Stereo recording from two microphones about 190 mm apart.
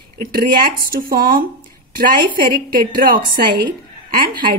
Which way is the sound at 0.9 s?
50° right (ahead or behind).